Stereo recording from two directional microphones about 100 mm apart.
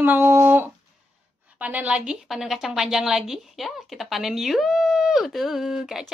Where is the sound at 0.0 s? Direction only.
20° right (ahead or behind).